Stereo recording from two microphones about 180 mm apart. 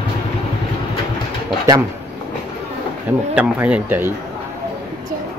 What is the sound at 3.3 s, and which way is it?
Speech, 5° right (ahead or behind).